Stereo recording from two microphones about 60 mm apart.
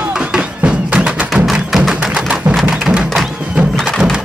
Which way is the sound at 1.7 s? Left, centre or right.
Centre.